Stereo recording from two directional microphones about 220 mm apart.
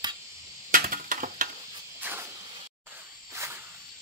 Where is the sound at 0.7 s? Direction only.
40° right (ahead or behind).